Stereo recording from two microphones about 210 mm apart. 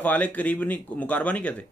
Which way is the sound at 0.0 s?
10° left (ahead or behind).